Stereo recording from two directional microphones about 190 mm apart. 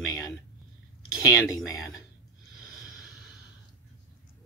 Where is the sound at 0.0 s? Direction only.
20° left (ahead or behind).